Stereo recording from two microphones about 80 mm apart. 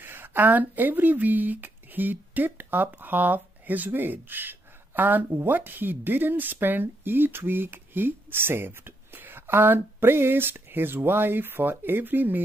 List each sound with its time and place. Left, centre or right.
0.0 s speech: right